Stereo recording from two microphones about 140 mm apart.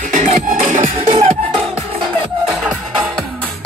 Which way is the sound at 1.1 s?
55° right (ahead or behind).